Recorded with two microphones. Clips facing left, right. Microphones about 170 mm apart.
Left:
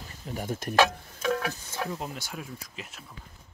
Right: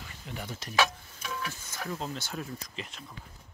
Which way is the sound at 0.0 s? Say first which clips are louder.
Left 5 dB; 40° left (ahead or behind).